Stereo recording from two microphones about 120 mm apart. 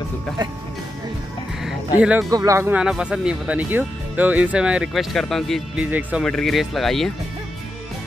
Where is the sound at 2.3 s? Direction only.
25° right (ahead or behind).